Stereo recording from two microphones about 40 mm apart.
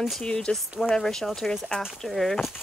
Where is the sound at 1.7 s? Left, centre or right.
Left.